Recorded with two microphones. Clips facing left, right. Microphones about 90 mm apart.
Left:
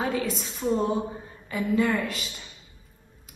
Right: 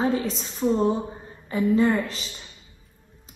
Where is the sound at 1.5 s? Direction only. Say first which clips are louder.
Right 4 dB; 30° right (ahead or behind).